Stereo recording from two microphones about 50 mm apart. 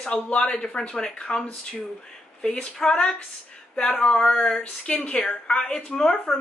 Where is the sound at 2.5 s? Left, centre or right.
Centre.